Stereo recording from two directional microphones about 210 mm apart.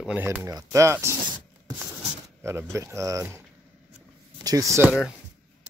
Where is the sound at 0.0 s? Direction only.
5° right (ahead or behind).